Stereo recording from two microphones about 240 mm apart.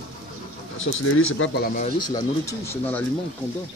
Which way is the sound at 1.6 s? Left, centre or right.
Left.